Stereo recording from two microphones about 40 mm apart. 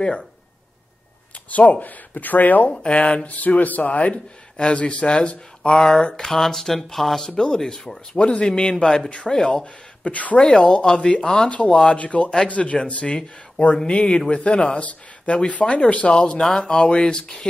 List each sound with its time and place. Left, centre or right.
1.5 s speech: left
2.7 s speech: left
3.3 s speech: left; by 7.2 s centre
7.2 s speech: centre
8.1 s speech: left
8.5 s speech: centre
10.0 s speech: left
10.4 s speech: left
12.0 s speech: left
14.8 s a sound: left
15.5 s speech: left